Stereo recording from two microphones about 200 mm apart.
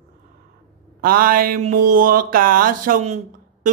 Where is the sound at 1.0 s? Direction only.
45° right (ahead or behind).